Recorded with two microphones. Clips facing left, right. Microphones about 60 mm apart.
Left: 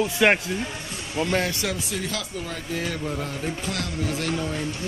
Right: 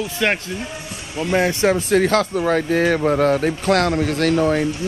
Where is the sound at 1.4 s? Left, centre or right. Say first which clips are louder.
Right 9 dB; right.